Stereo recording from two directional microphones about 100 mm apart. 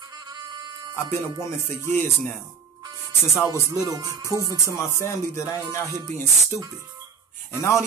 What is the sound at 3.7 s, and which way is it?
Speech, 35° right (ahead or behind).